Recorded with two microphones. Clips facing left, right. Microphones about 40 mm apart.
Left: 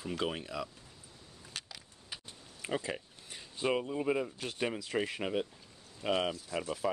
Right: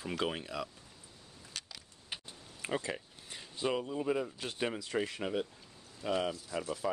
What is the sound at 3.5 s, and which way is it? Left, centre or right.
Speech, centre.